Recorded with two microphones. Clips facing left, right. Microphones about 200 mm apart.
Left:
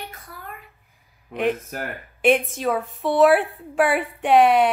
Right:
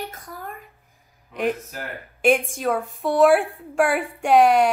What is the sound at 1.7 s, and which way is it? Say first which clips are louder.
Speech: left 4 dB; 55° left (ahead or behind).